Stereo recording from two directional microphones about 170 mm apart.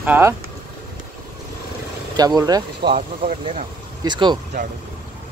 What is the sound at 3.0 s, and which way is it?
Speech, 45° right (ahead or behind).